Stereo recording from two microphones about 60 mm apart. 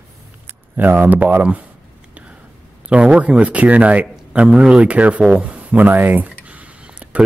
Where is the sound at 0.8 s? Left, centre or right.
Right.